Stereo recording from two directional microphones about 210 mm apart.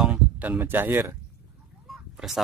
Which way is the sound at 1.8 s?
Centre (ahead or behind).